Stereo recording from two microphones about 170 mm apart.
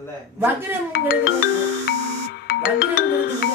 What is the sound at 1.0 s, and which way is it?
Music, 70° left (ahead or behind).